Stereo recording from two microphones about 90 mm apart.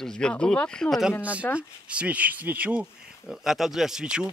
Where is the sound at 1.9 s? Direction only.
15° right (ahead or behind).